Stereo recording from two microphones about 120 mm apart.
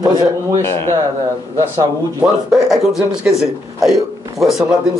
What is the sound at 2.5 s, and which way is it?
Speech, 5° right (ahead or behind).